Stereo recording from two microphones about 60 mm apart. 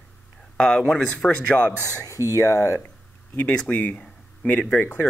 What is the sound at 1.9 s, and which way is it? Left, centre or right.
Speech, left.